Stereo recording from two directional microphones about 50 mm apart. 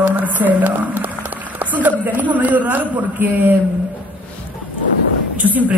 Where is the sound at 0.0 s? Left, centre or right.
Right.